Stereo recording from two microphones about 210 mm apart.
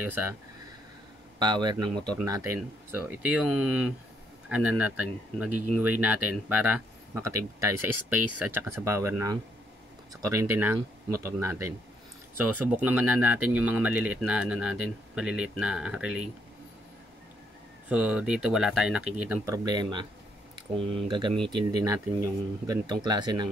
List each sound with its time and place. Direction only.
0.0 s speech: 10° right (ahead or behind)
1.4 s speech: 20° right (ahead or behind); by 16.3 s 5° right (ahead or behind)
17.8 s speech: 5° right (ahead or behind); by 23.5 s 20° right (ahead or behind)